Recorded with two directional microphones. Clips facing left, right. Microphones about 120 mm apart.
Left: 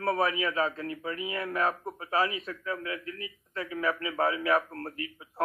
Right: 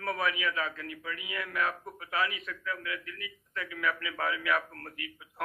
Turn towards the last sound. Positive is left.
turn(degrees=30)  # may be behind; listen again after turning